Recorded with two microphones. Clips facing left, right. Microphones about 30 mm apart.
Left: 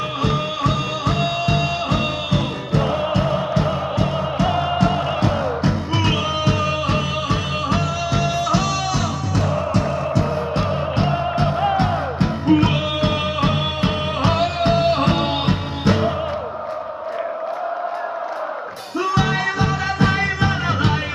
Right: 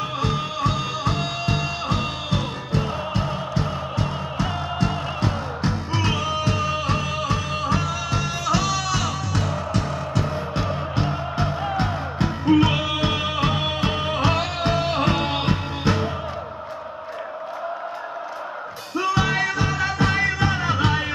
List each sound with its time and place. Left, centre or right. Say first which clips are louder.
0.2 s music: left 4 dB; centre
10.5 s music: left 4 dB; left
12.4 s music: left 1 dB; centre
18.9 s music: left 2 dB; centre